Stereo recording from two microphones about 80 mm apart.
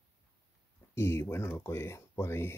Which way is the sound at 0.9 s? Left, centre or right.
Left.